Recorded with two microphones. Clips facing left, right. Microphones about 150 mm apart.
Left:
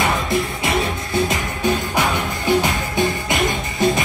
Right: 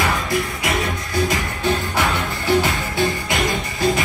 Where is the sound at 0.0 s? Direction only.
25° left (ahead or behind).